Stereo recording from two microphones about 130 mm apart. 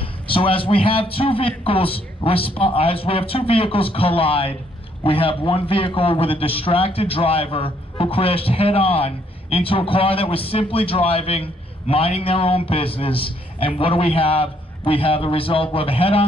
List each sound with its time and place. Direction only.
0.0 s a man's voice: 45° left (ahead or behind)